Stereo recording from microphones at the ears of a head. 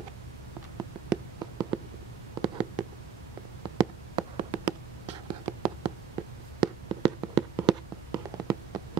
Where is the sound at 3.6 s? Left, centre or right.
Right.